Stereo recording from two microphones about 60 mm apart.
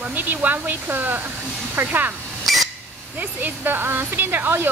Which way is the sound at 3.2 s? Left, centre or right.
Right.